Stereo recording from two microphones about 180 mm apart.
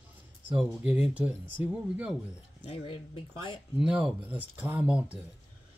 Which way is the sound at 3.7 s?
5° right (ahead or behind).